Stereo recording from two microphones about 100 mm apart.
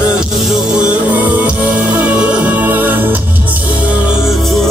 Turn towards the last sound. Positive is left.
turn(degrees=-5)  # may be behind; listen again after turning